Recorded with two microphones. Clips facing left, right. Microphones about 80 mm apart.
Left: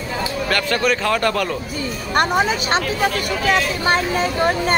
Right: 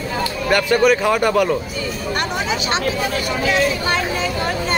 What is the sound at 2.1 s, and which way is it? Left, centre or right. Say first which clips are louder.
Speech: left 7 dB; left.